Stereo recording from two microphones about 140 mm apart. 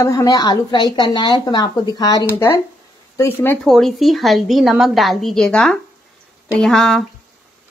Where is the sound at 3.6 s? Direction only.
Centre (ahead or behind).